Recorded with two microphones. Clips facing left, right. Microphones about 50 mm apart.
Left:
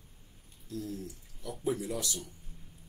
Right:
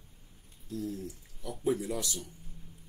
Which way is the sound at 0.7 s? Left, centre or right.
Right.